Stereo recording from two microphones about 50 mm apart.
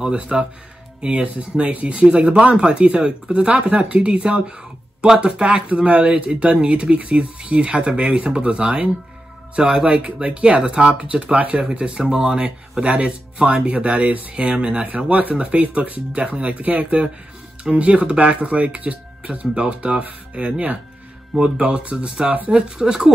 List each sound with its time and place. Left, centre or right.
0.0 s speech: centre